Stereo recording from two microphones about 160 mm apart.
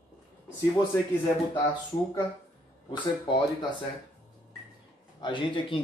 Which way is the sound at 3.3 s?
30° left (ahead or behind).